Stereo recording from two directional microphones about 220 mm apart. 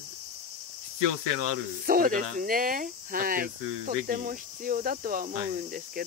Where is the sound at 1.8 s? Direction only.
40° right (ahead or behind).